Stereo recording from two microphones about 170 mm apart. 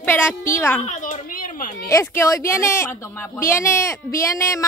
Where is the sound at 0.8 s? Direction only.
45° left (ahead or behind).